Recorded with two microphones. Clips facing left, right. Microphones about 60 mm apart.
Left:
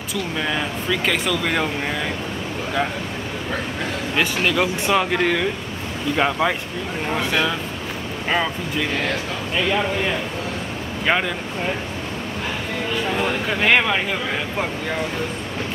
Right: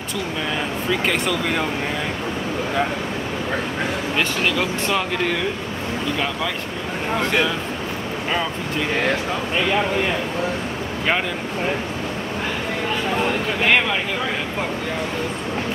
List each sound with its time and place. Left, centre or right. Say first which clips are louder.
1.1 s speech: even; centre
4.2 s speech: left 3 dB; centre
6.1 s speech: left 4 dB; left
13.1 s speech: right 1 dB; centre